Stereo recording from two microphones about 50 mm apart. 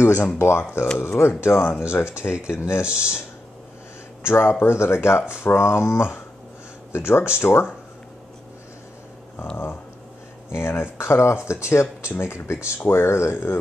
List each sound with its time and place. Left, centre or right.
0.4 s speech: left
2.8 s speech: centre
4.2 s speech: left
10.5 s speech: left